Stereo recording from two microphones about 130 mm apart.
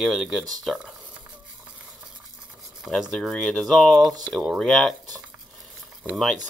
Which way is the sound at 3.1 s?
Centre (ahead or behind).